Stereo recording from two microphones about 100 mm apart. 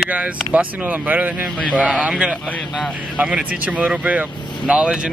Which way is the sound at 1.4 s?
5° right (ahead or behind).